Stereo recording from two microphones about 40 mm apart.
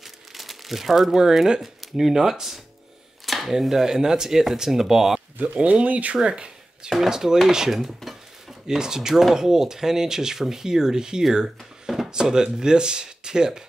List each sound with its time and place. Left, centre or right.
0.0 s crumpling: centre
1.8 s speech: centre
3.3 s a sound: centre
3.5 s speech: centre
5.4 s speech: right
6.2 s a sound: right
6.9 s speech: centre
7.5 s a sound: centre
8.6 s speech: centre